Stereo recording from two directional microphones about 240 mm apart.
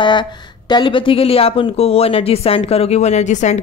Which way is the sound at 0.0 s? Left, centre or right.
Centre.